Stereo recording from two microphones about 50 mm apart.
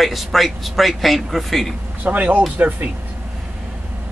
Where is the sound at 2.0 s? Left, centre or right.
Right.